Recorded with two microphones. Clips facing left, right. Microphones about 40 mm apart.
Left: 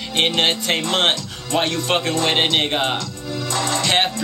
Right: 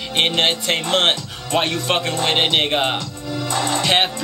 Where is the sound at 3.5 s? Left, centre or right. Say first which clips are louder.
Right 1 dB; right.